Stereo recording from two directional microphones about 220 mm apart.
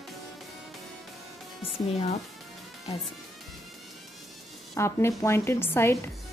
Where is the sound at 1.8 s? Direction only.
30° left (ahead or behind).